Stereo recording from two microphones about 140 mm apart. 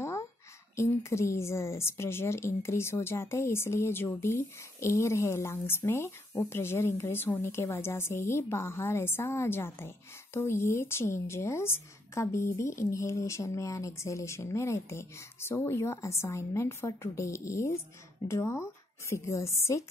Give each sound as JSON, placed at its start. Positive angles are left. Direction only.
{"t": 0.7, "sound": "a woman's voice", "side_deg": 20}